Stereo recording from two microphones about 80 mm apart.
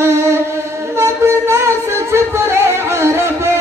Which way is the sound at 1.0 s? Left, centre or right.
Right.